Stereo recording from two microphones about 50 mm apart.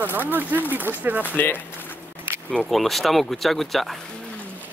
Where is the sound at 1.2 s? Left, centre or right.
Left.